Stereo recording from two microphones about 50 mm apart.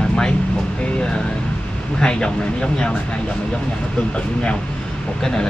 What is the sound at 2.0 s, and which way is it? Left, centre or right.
Speech, centre.